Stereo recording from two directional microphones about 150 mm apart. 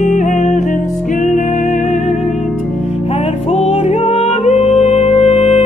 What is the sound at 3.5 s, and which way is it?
Music, 40° left (ahead or behind).